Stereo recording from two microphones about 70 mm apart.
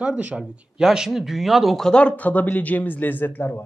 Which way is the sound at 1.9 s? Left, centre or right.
Centre.